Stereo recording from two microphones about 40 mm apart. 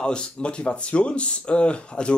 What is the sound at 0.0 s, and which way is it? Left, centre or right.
Speech, left.